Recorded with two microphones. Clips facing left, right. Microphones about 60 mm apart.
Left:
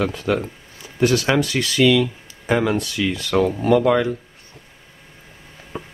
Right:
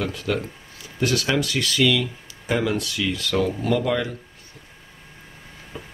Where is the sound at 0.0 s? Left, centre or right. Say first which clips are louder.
Left 4 dB; left.